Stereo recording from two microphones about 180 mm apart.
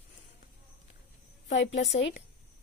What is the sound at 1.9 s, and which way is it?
Speech, 75° left (ahead or behind).